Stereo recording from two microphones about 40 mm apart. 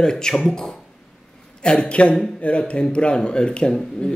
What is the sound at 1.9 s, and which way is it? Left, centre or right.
Speech, left.